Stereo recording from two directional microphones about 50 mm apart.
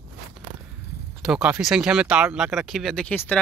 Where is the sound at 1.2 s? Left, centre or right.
Centre.